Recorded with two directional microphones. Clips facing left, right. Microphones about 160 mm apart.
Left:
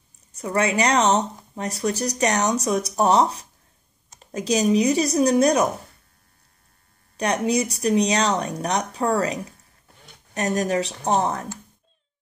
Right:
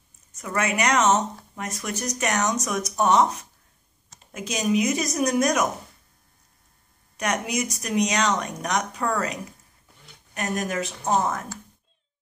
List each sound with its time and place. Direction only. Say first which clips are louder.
0.4 s speech: left 4 dB; 30° left (ahead or behind)
7.2 s speech: left 5 dB; 30° left (ahead or behind)